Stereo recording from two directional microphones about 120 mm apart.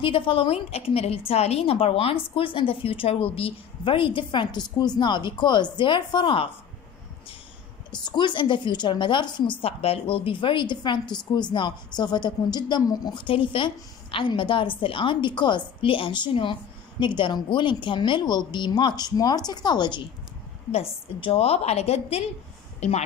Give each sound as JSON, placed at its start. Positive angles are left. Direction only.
{"t": 0.0, "sound": "a woman's voice", "side_deg": 45}
{"t": 7.9, "sound": "a woman's voice", "side_deg": 40}
{"t": 20.7, "sound": "a woman's voice", "side_deg": 50}